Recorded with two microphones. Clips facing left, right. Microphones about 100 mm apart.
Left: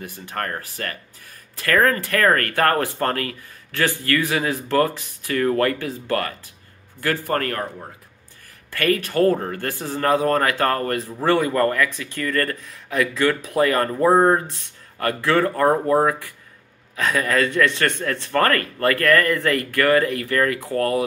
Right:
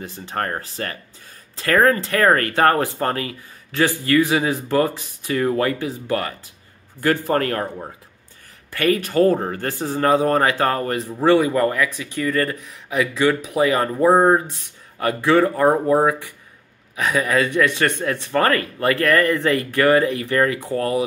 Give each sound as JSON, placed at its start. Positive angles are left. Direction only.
{"t": 0.0, "sound": "speech", "side_deg": -25}
{"t": 8.7, "sound": "speech", "side_deg": -20}